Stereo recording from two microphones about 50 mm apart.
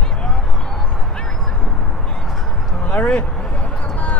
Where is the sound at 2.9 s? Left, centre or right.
Left.